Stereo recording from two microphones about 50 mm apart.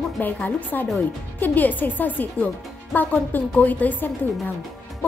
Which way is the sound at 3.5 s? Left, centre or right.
Left.